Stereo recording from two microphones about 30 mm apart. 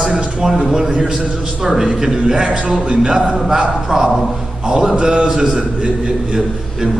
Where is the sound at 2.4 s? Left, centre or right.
Right.